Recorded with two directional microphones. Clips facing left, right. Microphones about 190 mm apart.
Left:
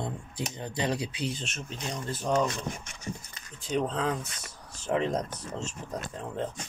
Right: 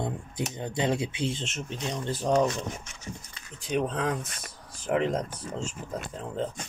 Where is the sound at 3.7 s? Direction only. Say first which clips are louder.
Right 1 dB; 15° right (ahead or behind).